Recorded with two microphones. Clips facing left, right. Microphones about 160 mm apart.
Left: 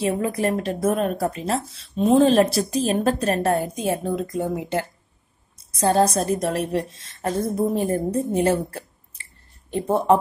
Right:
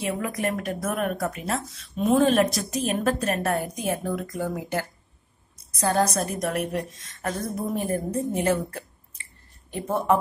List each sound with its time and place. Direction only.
0.0 s a woman's voice: 30° left (ahead or behind)